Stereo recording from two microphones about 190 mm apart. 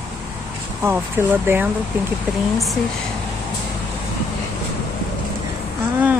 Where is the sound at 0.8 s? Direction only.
10° right (ahead or behind).